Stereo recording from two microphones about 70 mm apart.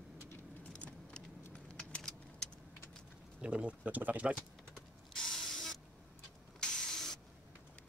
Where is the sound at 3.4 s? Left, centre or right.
Centre.